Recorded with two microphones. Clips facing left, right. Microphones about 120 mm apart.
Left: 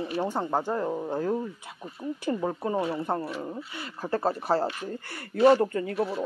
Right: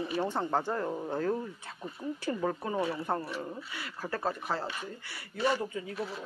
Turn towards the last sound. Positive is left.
turn(degrees=75)  # may be behind; listen again after turning